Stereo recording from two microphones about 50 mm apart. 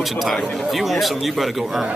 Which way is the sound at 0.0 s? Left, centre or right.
Centre.